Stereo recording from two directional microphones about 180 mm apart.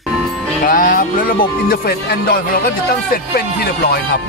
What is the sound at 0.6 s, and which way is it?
Speech, 50° left (ahead or behind).